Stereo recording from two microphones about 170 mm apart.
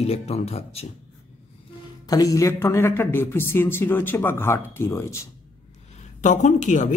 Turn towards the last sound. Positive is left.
turn(degrees=45)  # may be behind; listen again after turning